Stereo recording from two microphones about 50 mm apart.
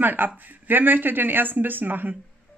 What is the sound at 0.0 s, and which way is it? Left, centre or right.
Speech, right.